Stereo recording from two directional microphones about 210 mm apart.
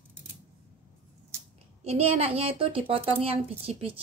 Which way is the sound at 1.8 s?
30° right (ahead or behind).